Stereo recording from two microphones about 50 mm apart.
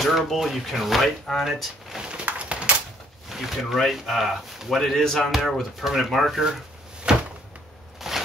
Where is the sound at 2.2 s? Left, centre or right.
Right.